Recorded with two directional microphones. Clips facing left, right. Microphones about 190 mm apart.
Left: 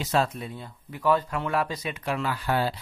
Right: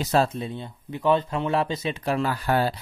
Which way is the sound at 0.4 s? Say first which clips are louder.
Right 5 dB; 25° right (ahead or behind).